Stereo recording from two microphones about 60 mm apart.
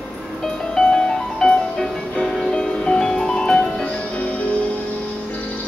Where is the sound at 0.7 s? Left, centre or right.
Centre.